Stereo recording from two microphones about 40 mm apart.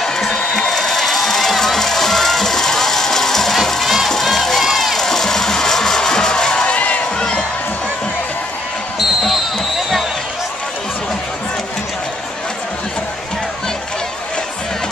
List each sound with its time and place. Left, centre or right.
0.0 s crowd: centre
6.6 s music: left
7.2 s crowd: centre
9.2 s music: centre